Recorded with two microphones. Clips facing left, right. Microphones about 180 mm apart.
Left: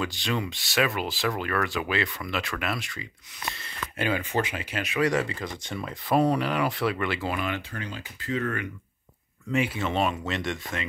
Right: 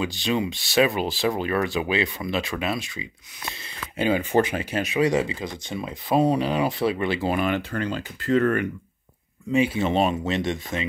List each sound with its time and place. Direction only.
0.0 s speech: 20° right (ahead or behind)
3.5 s a sound: 15° right (ahead or behind)
4.0 s speech: 30° right (ahead or behind)
4.9 s speech: 20° right (ahead or behind)
7.2 s speech: 45° right (ahead or behind)
7.8 s speech: 70° right (ahead or behind)
9.6 s speech: 25° right (ahead or behind)